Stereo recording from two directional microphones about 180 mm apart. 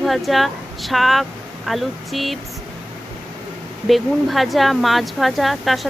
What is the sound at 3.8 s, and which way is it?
Speech, centre (ahead or behind).